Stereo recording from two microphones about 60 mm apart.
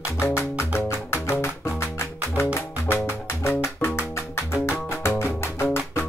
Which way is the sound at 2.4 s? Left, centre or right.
Left.